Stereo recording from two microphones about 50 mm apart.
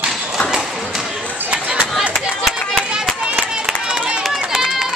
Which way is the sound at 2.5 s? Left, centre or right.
Centre.